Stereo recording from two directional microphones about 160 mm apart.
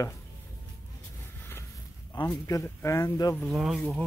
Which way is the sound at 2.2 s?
30° left (ahead or behind).